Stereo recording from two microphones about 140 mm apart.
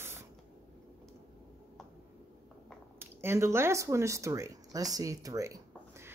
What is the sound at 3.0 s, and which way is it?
Speech, 15° right (ahead or behind).